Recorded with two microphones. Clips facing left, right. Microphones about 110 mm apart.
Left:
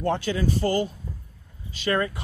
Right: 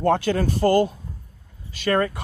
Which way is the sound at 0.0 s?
55° right (ahead or behind).